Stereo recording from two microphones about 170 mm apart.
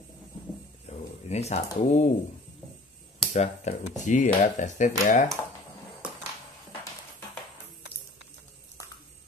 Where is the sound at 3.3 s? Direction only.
40° left (ahead or behind).